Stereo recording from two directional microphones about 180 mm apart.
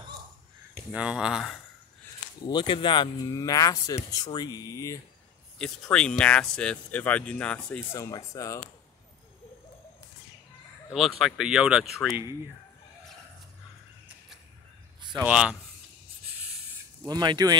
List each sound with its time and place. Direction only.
0.9 s speech: 5° right (ahead or behind)
2.4 s speech: 25° left (ahead or behind)
5.6 s speech: 5° left (ahead or behind)
10.9 s speech: centre (ahead or behind)
15.2 s speech: 5° right (ahead or behind)
17.0 s speech: 25° right (ahead or behind)